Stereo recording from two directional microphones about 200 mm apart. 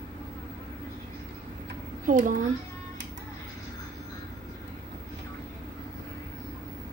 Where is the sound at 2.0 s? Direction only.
40° right (ahead or behind).